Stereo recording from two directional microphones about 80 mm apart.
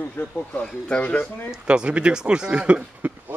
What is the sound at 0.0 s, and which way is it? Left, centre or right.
Speech, centre.